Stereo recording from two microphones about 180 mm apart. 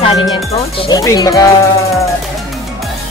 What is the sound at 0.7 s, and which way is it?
Speech, 20° left (ahead or behind).